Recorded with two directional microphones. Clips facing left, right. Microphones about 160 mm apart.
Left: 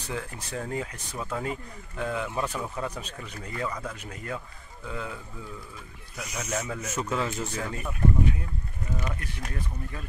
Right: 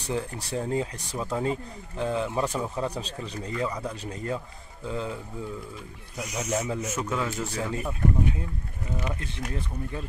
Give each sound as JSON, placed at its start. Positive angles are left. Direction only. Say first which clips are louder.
{"t": 0.1, "sound": "speech", "louder": "right 5 dB", "side_deg": -35}
{"t": 2.9, "sound": "speech", "louder": "right 5 dB", "side_deg": -35}
{"t": 7.0, "sound": "speech", "louder": "left 4 dB", "side_deg": -5}
{"t": 9.0, "sound": "speech", "louder": "right 2 dB", "side_deg": -20}